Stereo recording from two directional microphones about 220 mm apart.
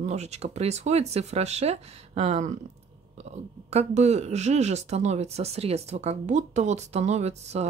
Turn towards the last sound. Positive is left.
turn(degrees=-30)  # may be behind; listen again after turning